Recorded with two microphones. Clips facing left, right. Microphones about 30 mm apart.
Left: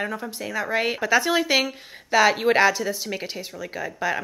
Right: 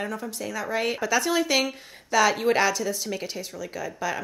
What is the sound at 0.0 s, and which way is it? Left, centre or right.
Speech, left.